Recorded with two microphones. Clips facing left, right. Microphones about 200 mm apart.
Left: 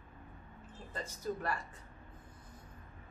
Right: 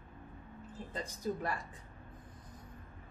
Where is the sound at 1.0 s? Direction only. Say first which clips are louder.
Right 1 dB; 15° right (ahead or behind).